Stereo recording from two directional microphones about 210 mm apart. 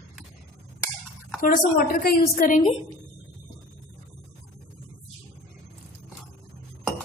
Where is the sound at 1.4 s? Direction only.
45° left (ahead or behind).